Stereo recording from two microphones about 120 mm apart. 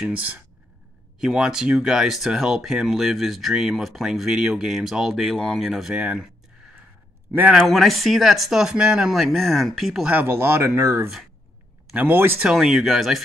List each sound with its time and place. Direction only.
0.0 s speech: 10° right (ahead or behind)
7.3 s speech: 15° right (ahead or behind)
7.6 s speech: centre (ahead or behind)
10.1 s speech: 20° right (ahead or behind)
12.4 s speech: 5° right (ahead or behind)